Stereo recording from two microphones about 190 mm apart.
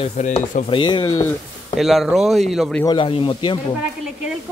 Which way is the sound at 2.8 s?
25° left (ahead or behind).